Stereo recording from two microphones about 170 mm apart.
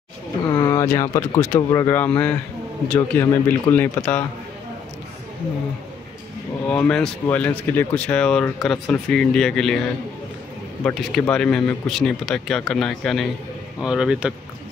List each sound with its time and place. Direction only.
0.5 s a man's voice: 20° left (ahead or behind)
6.7 s speech: 5° left (ahead or behind)